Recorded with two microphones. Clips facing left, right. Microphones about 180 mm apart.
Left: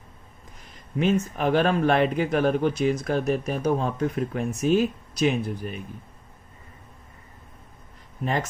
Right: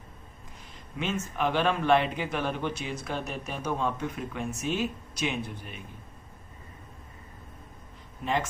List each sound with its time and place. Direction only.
0.9 s a man's voice: 40° left (ahead or behind)